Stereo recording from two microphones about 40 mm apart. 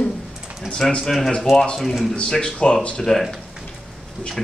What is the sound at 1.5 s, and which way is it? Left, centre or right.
Speech, centre.